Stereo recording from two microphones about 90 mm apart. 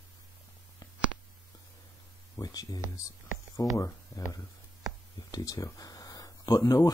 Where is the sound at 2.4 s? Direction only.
45° left (ahead or behind).